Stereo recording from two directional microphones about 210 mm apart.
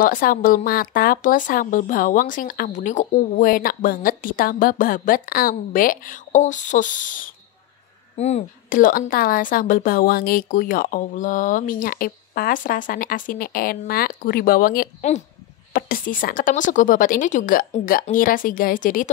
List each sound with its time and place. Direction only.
0.0 s speech: 45° left (ahead or behind)